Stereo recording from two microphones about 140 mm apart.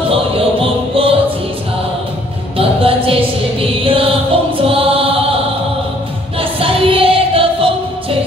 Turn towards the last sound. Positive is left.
turn(degrees=-40)  # may be behind; listen again after turning